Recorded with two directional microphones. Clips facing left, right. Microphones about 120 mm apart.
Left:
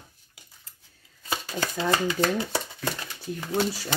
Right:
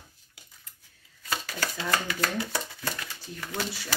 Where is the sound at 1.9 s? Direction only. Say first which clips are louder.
Left 6 dB; 25° left (ahead or behind).